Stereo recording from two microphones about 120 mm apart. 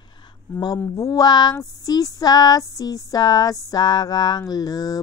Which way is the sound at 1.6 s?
30° left (ahead or behind).